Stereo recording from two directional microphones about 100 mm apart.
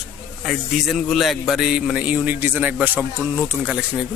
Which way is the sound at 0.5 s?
Centre (ahead or behind).